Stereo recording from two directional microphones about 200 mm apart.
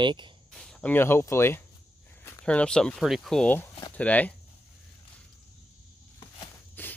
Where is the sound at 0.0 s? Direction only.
25° right (ahead or behind).